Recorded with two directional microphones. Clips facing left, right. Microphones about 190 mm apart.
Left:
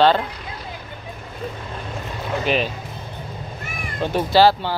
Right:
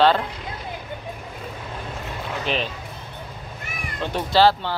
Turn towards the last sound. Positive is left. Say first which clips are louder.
# left 2 dB
turn(degrees=10)  # may be behind; listen again after turning